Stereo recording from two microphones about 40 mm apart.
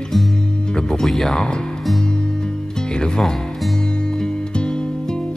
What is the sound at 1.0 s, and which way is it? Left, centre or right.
Speech, centre.